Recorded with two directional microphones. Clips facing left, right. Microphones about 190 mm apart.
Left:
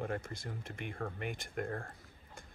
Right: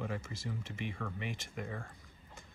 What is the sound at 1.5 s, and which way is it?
Speech, 55° left (ahead or behind).